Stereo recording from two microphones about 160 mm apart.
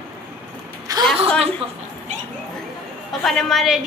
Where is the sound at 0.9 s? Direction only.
20° right (ahead or behind).